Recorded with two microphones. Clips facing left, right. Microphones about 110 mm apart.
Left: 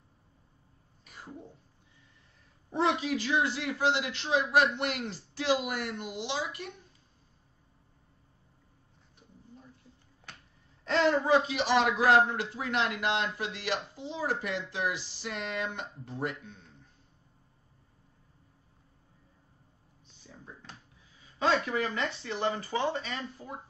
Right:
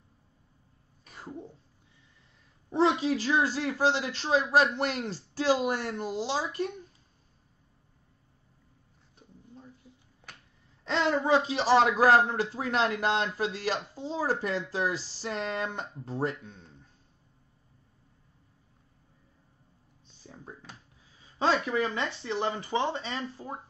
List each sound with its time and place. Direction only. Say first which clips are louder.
2.7 s speech: right 3 dB; 30° right (ahead or behind)
10.9 s speech: even; 25° right (ahead or behind)
20.2 s a sound: right 3 dB; 40° right (ahead or behind)
21.4 s speech: right 2 dB; 25° right (ahead or behind)